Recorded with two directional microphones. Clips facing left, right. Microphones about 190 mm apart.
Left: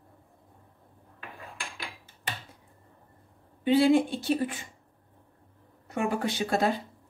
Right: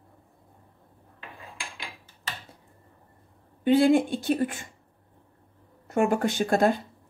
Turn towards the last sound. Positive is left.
turn(degrees=-50)  # may be behind; listen again after turning